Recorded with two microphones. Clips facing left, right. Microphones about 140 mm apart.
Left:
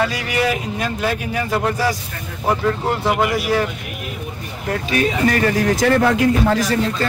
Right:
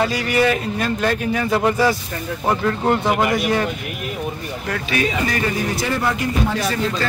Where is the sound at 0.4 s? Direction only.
5° left (ahead or behind).